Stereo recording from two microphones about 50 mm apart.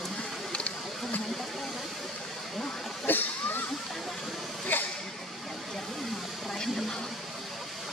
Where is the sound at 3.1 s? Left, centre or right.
Left.